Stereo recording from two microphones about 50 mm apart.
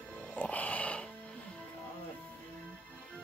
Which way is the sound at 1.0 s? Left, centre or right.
Centre.